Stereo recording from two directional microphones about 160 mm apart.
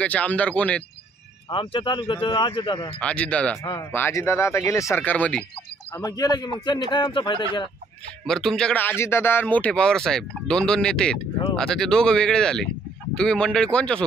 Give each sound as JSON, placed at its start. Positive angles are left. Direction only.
{"t": 0.0, "sound": "speech", "side_deg": 10}
{"t": 1.5, "sound": "speech", "side_deg": 30}
{"t": 3.0, "sound": "speech", "side_deg": 5}
{"t": 5.9, "sound": "a man's voice", "side_deg": 25}
{"t": 8.3, "sound": "a man's voice", "side_deg": 5}